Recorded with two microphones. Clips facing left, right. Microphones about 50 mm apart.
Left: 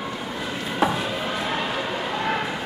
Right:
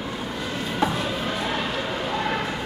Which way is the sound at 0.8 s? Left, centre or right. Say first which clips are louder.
Left 2 dB; centre.